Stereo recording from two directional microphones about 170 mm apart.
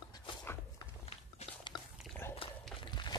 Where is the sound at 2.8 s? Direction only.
25° left (ahead or behind).